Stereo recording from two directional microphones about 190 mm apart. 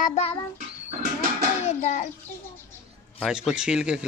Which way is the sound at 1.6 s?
40° left (ahead or behind).